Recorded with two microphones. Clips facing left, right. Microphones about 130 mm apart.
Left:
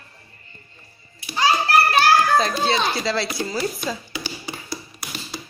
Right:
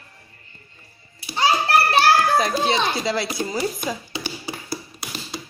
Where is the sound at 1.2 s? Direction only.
30° right (ahead or behind).